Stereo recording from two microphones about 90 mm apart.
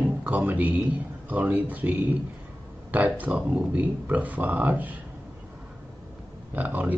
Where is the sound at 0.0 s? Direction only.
15° right (ahead or behind).